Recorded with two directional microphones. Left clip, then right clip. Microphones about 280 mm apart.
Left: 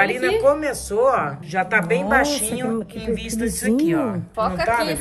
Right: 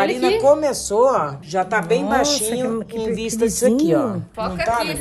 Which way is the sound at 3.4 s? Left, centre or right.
Centre.